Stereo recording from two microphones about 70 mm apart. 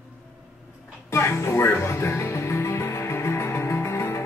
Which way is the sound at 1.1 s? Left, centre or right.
Left.